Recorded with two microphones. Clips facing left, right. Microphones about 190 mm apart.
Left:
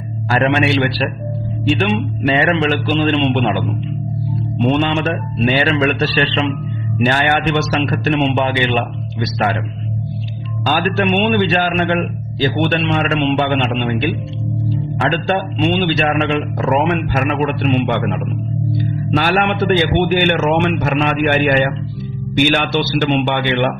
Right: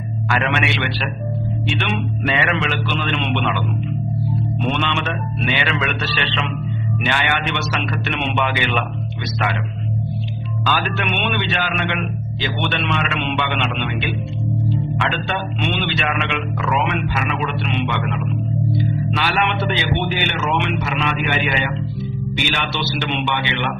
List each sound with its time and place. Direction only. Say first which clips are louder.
0.3 s a man's voice: left 7 dB; 35° left (ahead or behind)
10.7 s a man's voice: left 7 dB; 40° left (ahead or behind)
19.0 s a man's voice: left 9 dB; 45° left (ahead or behind)